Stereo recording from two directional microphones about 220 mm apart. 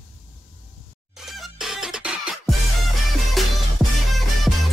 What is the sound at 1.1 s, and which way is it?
Music, centre (ahead or behind).